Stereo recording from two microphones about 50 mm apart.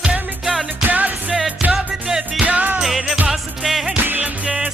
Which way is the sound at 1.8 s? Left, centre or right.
Centre.